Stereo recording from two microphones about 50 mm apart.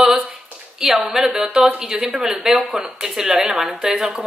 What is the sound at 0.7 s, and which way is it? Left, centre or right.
A woman's voice, centre.